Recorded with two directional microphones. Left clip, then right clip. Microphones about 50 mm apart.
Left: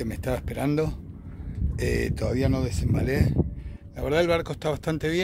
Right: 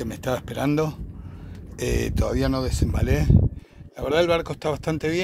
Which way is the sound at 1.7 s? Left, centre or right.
Left.